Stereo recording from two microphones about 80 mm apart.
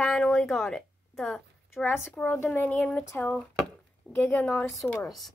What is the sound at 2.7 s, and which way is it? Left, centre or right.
Speech, centre.